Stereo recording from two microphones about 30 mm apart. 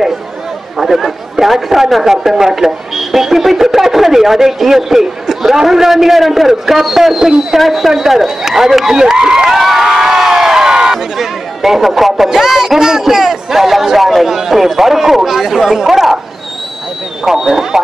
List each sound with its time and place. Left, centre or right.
0.7 s chatter: centre
1.4 s speech: centre
9.5 s crowd: centre
11.1 s speech: centre
17.2 s speech: centre